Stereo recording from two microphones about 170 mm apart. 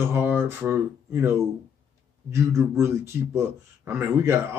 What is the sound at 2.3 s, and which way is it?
A man's voice, 15° right (ahead or behind).